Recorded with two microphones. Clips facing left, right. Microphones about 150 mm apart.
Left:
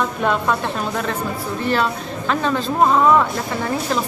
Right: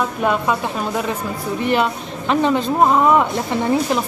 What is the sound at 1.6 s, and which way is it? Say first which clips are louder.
A woman's voice: right 2 dB; 15° right (ahead or behind).